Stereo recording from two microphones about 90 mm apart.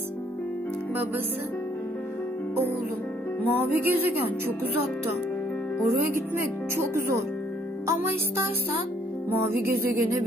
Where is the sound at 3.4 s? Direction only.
20° right (ahead or behind).